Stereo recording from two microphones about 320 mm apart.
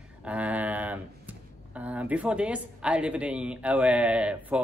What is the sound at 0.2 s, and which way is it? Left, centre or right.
Speech, centre.